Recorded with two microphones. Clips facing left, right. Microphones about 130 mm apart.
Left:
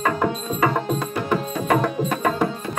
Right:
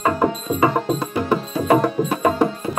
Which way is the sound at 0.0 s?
20° right (ahead or behind).